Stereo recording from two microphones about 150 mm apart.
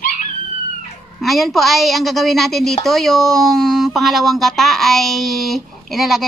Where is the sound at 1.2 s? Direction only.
Centre (ahead or behind).